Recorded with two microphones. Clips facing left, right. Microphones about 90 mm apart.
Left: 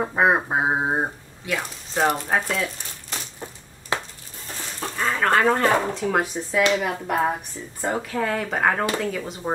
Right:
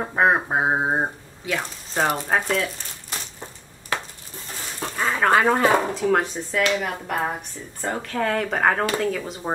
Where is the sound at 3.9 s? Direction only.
20° left (ahead or behind).